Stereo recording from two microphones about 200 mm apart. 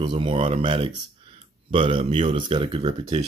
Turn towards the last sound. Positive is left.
turn(degrees=-30)  # may be behind; listen again after turning